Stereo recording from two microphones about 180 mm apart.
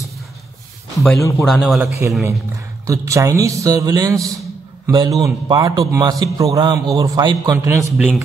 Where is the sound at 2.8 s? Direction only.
15° right (ahead or behind).